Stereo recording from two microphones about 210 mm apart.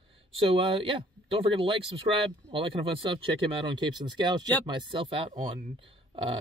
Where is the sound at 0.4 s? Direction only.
25° right (ahead or behind).